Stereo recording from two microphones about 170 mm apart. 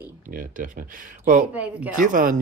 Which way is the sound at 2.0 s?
55° right (ahead or behind).